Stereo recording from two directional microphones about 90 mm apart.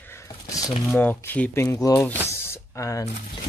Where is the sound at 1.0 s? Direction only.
20° left (ahead or behind).